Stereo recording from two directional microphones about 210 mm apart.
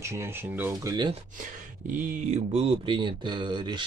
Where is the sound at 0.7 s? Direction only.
20° right (ahead or behind).